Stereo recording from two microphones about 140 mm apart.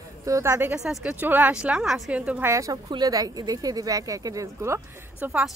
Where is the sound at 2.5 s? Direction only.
25° right (ahead or behind).